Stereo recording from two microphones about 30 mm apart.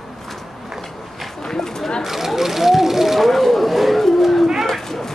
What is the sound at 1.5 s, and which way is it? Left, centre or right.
Speech, centre.